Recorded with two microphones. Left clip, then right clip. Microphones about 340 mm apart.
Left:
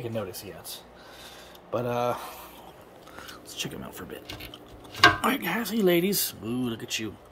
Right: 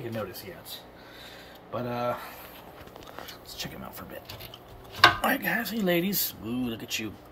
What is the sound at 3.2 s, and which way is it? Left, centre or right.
Whispering, centre.